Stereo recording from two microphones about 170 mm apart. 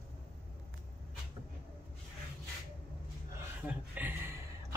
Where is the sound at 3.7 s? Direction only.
10° right (ahead or behind).